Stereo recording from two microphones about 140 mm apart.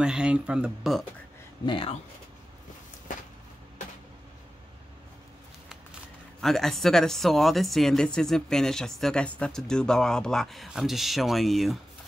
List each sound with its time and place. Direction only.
0.0 s speech: 5° right (ahead or behind)
1.7 s speech: 40° left (ahead or behind)
6.4 s speech: centre (ahead or behind)